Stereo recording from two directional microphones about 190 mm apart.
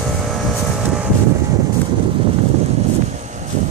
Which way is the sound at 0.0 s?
Centre (ahead or behind).